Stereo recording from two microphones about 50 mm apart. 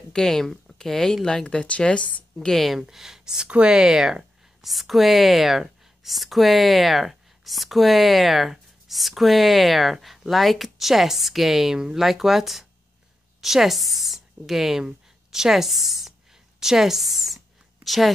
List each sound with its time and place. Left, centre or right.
0.1 s speech: centre; by 2.2 s left
2.4 s speech: centre
3.4 s speech: right
3.7 s a woman's voice: centre